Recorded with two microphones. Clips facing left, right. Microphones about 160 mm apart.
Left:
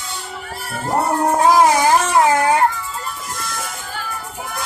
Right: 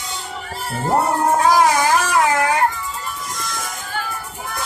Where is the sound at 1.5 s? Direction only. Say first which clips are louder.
Left 4 dB; 25° left (ahead or behind).